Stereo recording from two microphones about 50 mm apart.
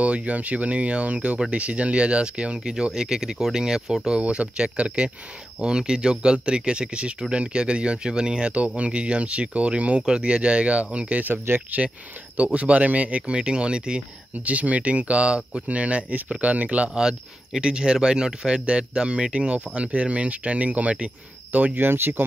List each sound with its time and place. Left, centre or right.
0.0 s speech: right
11.7 s speech: right
16.9 s speech: centre; by 21.8 s right
21.8 s speech: right